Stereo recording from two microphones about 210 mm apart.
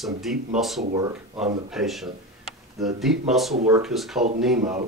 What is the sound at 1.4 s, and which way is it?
Speech, centre (ahead or behind).